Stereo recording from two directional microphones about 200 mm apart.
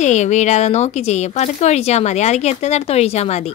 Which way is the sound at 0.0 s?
35° left (ahead or behind).